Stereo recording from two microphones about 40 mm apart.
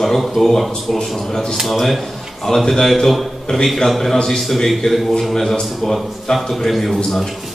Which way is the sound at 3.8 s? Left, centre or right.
Centre.